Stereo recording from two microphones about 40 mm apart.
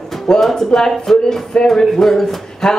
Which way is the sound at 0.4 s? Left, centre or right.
Centre.